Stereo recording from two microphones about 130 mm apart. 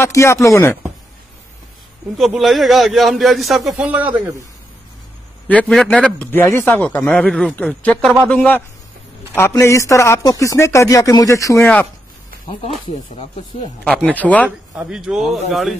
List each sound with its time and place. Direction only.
0.0 s a man's voice: 20° left (ahead or behind)
2.1 s a man's voice: centre (ahead or behind)
5.5 s a man's voice: 5° left (ahead or behind); by 11.6 s 25° left (ahead or behind)
11.6 s a man's voice: 10° left (ahead or behind)
12.8 s speech: 50° left (ahead or behind)
14.0 s a man's voice: 10° left (ahead or behind)
14.8 s a man's voice: 5° right (ahead or behind)